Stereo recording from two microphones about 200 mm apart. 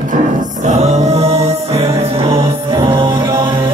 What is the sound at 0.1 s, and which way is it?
Music, 35° right (ahead or behind).